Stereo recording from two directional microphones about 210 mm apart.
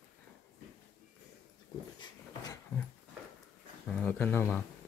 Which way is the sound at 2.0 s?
20° left (ahead or behind).